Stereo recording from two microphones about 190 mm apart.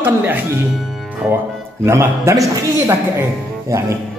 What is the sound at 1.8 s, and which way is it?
Speech, 15° right (ahead or behind).